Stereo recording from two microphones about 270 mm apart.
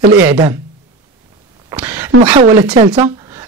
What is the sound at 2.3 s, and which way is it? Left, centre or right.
Speech, centre.